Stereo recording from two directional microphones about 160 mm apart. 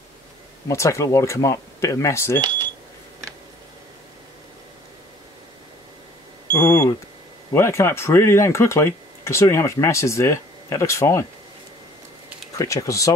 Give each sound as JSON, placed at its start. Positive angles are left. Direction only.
{"t": 0.7, "sound": "speech", "side_deg": 20}
{"t": 6.6, "sound": "speech", "side_deg": 15}
{"t": 12.5, "sound": "speech", "side_deg": 20}